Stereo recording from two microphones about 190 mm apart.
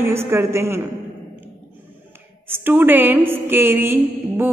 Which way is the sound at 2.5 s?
10° right (ahead or behind).